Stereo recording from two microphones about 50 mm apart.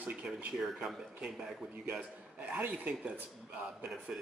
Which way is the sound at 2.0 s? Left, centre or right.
Right.